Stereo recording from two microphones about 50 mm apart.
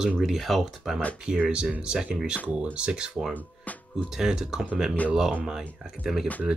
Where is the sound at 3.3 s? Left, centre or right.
Left.